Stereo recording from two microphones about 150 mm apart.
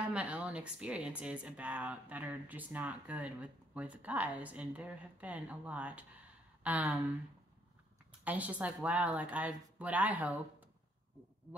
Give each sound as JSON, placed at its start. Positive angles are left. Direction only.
{"t": 0.0, "sound": "speech", "side_deg": -10}
{"t": 8.2, "sound": "speech", "side_deg": -10}